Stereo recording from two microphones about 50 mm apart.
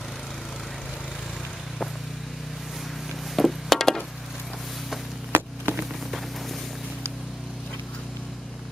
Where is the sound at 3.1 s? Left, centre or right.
Centre.